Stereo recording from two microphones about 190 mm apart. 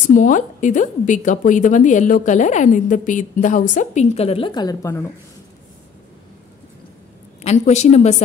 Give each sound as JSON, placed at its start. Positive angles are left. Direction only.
{"t": 0.1, "sound": "a woman's voice", "side_deg": 40}
{"t": 7.4, "sound": "a woman's voice", "side_deg": 35}